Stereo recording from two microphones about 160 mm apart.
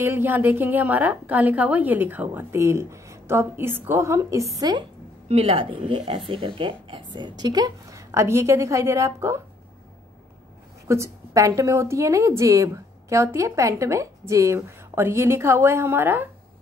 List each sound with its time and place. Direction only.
0.0 s a woman's voice: 15° right (ahead or behind)
5.3 s speech: 40° right (ahead or behind); by 9.4 s 15° right (ahead or behind)
10.9 s a woman's voice: 20° right (ahead or behind)